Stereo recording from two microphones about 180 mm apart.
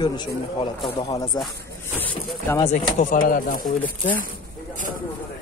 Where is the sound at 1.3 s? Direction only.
20° left (ahead or behind).